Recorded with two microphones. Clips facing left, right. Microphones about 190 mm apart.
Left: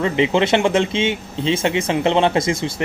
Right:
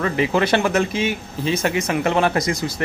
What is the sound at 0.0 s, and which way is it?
Speech, 20° left (ahead or behind).